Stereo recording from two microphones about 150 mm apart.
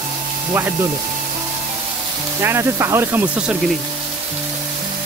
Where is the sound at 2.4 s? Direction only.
15° right (ahead or behind).